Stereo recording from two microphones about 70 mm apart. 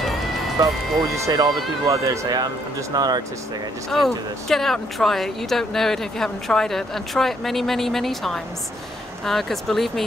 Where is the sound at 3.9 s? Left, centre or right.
Centre.